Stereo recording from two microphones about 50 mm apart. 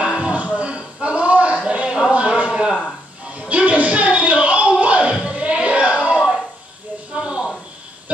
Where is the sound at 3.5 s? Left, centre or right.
Right.